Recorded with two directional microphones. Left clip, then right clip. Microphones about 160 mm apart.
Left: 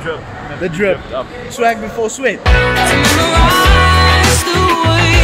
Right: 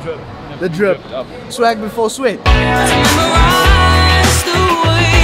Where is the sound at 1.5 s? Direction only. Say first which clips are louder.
Right 1 dB; 25° right (ahead or behind).